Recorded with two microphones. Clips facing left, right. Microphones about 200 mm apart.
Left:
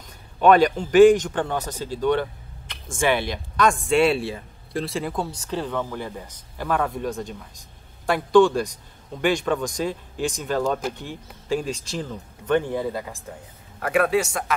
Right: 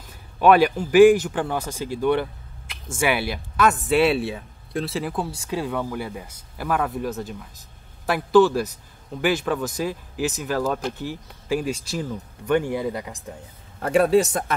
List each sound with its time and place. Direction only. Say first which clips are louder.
0.4 s speech: even; 10° right (ahead or behind)
13.7 s a man's voice: right 3 dB; 30° right (ahead or behind)